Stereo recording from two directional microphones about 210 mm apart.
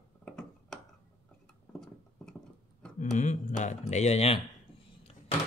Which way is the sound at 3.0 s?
35° left (ahead or behind).